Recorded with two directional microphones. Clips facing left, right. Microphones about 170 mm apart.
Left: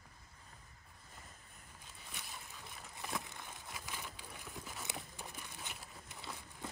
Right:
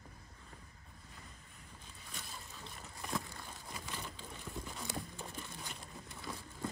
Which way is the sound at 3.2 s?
15° left (ahead or behind).